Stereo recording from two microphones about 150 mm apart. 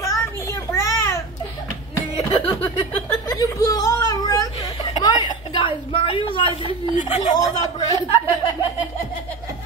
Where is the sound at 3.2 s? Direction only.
25° left (ahead or behind).